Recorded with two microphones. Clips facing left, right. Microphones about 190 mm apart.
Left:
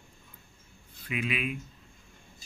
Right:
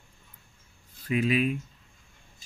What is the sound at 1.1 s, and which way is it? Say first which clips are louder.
Speech: right 7 dB; 40° right (ahead or behind).